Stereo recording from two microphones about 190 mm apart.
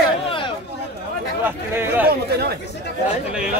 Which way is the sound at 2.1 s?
55° right (ahead or behind).